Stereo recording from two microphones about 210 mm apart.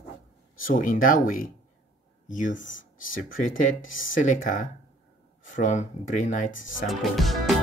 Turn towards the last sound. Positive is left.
turn(degrees=0)  # may be behind; listen again after turning